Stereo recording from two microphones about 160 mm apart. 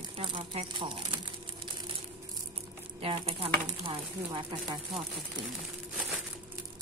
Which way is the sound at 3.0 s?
40° right (ahead or behind).